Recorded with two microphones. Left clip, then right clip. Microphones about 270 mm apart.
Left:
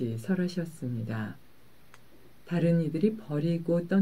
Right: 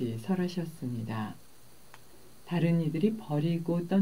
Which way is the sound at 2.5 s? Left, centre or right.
Centre.